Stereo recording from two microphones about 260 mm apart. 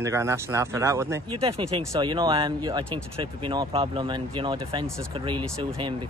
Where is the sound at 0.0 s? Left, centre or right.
Centre.